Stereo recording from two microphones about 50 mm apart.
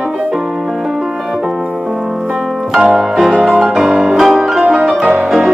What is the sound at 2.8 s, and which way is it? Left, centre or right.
Piano, centre.